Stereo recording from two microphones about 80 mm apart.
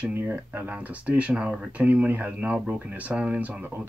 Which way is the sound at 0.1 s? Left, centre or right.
Right.